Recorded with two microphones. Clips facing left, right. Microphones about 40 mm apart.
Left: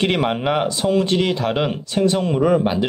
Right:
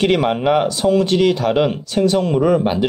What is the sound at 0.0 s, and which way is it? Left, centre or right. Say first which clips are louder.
Speech: right 3 dB; centre.